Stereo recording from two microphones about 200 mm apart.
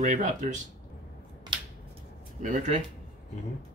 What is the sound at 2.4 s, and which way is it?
Speech, 40° right (ahead or behind).